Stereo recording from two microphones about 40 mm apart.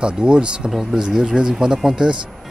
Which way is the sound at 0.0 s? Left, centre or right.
Right.